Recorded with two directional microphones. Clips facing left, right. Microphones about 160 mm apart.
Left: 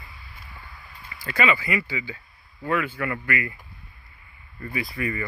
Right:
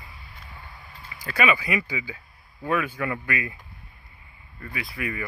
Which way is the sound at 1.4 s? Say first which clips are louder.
Even; 15° right (ahead or behind).